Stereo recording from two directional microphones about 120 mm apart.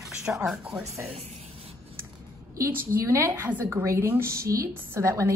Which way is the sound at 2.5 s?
25° right (ahead or behind).